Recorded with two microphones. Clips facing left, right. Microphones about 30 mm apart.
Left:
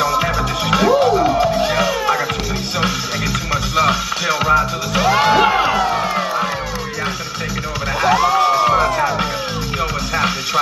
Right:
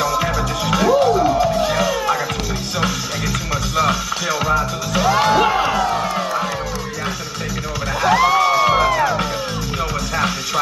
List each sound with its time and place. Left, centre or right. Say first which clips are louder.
0.0 s music: left 2 dB; centre
3.7 s music: left 2 dB; centre
8.0 s a sound: even; centre
8.5 s music: left 1 dB; centre
10.1 s music: left 3 dB; centre